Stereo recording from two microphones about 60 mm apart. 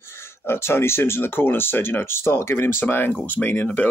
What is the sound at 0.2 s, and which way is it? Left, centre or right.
Speech, left.